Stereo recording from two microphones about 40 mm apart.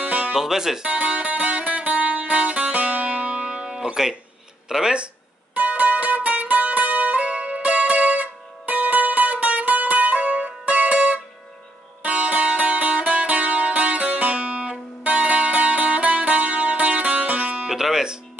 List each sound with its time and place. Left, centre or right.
0.0 s music: right
0.3 s speech: centre
0.8 s music: right; by 4.2 s centre
4.6 s speech: centre
4.9 s a sound: right
5.6 s music: right
17.6 s music: centre